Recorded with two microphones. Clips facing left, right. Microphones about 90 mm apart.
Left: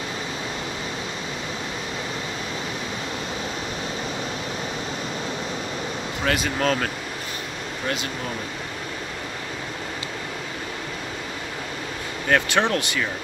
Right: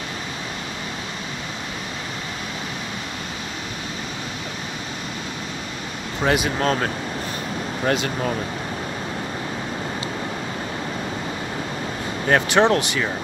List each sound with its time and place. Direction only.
6.2 s speech: 15° right (ahead or behind)
12.3 s speech: 30° right (ahead or behind)